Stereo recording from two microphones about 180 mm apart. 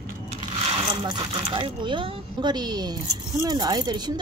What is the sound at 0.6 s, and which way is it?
Speech, 25° right (ahead or behind).